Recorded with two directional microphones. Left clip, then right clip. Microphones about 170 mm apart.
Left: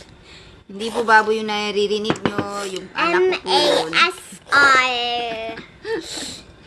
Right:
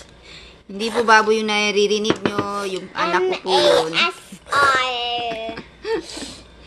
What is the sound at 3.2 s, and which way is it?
A child's voice, 65° left (ahead or behind).